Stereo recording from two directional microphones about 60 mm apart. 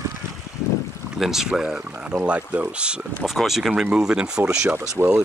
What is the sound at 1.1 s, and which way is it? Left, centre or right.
Speech, centre.